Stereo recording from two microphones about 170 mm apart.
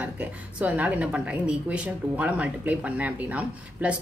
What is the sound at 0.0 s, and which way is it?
A woman's voice, 10° right (ahead or behind).